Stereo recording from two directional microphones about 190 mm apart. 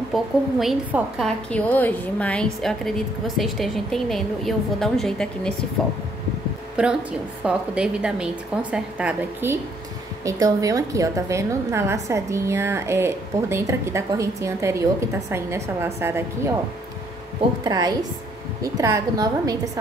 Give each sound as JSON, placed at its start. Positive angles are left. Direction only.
{"t": 0.1, "sound": "a woman's voice", "side_deg": 0}
{"t": 17.6, "sound": "a woman's voice", "side_deg": -20}